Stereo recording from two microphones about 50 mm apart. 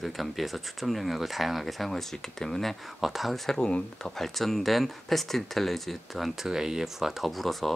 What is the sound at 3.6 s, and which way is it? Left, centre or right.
Speech, centre.